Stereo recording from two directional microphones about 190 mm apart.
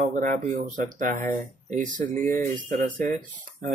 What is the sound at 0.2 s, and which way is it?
Speech, 45° right (ahead or behind).